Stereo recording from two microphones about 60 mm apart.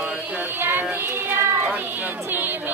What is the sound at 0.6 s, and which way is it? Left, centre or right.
Child singing, right.